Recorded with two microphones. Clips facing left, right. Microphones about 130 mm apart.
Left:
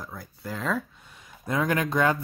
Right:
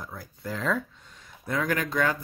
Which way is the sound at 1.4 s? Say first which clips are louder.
Left 2 dB; 20° left (ahead or behind).